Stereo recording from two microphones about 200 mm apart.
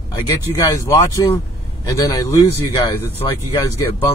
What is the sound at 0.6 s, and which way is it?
A man's voice, 15° left (ahead or behind).